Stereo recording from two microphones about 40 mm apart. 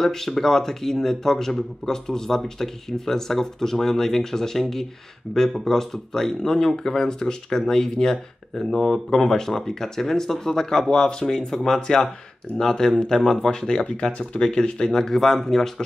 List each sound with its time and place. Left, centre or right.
0.0 s speech: centre